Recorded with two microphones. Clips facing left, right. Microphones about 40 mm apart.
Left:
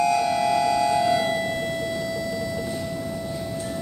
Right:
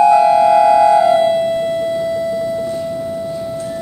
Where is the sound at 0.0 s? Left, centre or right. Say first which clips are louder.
Right 12 dB; right.